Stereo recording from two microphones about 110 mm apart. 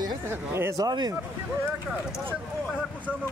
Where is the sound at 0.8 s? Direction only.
40° right (ahead or behind).